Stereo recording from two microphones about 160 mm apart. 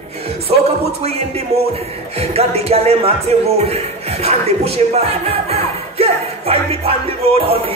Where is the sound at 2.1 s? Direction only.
40° right (ahead or behind).